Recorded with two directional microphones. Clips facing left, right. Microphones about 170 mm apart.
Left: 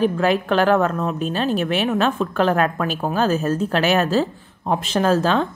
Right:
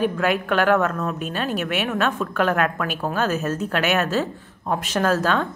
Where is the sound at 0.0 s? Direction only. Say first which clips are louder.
Left 3 dB; 30° left (ahead or behind).